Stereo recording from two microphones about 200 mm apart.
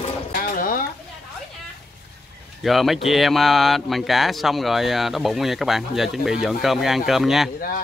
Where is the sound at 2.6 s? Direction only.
Centre (ahead or behind).